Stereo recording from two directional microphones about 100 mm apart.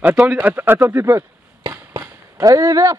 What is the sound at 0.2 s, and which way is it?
Speech, 15° right (ahead or behind).